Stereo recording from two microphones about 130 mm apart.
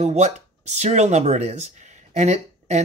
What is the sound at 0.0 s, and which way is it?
Speech, 60° right (ahead or behind).